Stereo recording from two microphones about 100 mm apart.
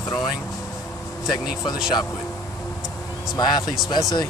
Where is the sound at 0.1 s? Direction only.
45° left (ahead or behind).